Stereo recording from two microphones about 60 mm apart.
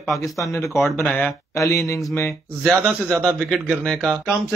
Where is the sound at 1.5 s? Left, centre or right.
Left.